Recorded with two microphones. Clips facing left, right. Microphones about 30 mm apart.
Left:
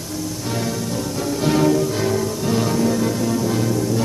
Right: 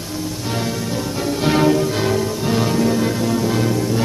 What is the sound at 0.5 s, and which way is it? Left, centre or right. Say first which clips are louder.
Music: right 1 dB; right.